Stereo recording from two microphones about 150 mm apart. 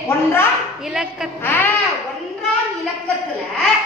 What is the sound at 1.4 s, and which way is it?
Speech, 15° left (ahead or behind).